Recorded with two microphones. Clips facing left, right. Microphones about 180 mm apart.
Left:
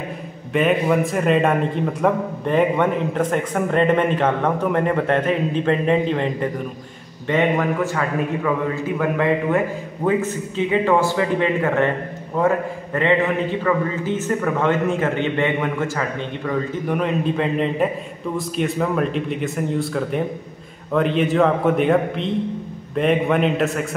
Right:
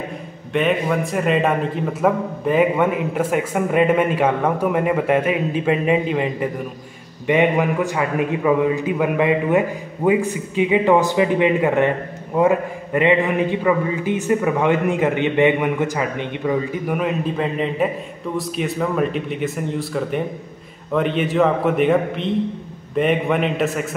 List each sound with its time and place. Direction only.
0.5 s a man's voice: centre (ahead or behind)